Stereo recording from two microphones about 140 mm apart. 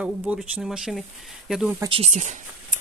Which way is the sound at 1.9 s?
50° right (ahead or behind).